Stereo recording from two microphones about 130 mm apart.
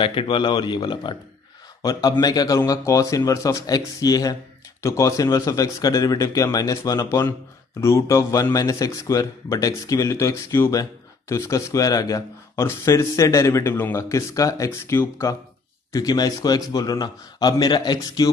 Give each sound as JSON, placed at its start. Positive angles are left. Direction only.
{"t": 0.0, "sound": "speech", "side_deg": 40}